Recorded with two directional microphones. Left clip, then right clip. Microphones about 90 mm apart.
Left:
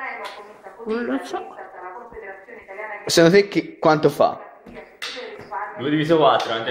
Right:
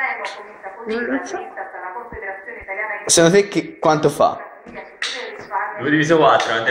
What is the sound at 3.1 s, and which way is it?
Speech, 55° left (ahead or behind).